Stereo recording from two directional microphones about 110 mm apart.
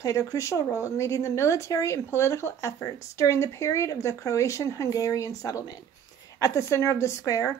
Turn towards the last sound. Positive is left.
turn(degrees=30)  # may be behind; listen again after turning